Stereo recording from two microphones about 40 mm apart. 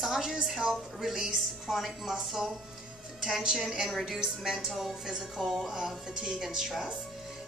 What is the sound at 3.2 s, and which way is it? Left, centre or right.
A woman's voice, centre.